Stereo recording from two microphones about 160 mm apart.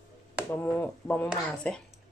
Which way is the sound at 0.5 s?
15° left (ahead or behind).